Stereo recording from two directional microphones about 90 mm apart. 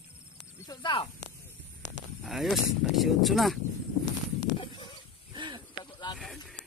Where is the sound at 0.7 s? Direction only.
60° left (ahead or behind).